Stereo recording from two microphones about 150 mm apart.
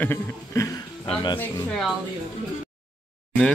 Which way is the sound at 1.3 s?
5° left (ahead or behind).